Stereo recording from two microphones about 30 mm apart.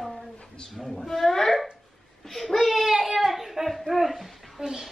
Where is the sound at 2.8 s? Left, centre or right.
Centre.